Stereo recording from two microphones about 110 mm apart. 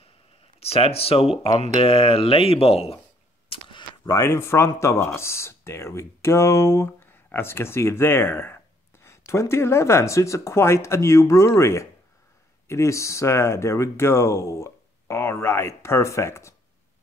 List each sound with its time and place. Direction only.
0.6 s speech: 60° left (ahead or behind)
3.4 s a sound: 50° left (ahead or behind)
4.0 s speech: 30° left (ahead or behind)